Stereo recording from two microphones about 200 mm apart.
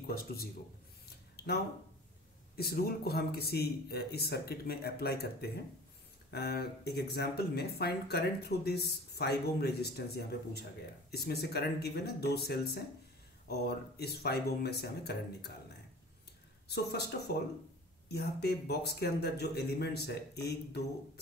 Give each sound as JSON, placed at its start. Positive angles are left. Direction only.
{"t": 0.0, "sound": "speech", "side_deg": 50}
{"t": 1.3, "sound": "a sound", "side_deg": 55}
{"t": 2.5, "sound": "speech", "side_deg": 50}
{"t": 16.6, "sound": "speech", "side_deg": 55}